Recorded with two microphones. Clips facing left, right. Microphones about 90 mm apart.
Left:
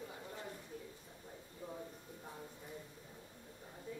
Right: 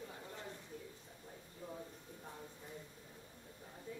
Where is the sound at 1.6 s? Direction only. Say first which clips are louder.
Left 1 dB; 20° left (ahead or behind).